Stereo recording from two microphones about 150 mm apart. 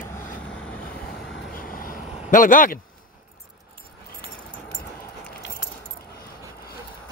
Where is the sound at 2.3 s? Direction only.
65° left (ahead or behind).